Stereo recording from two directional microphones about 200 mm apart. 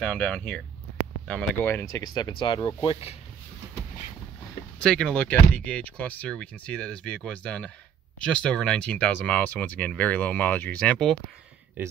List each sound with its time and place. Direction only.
0.0 s speech: 5° left (ahead or behind); by 3.2 s 25° left (ahead or behind)
4.8 s speech: 5° left (ahead or behind)